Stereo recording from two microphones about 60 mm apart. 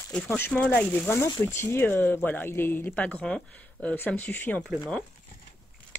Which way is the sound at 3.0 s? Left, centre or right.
Left.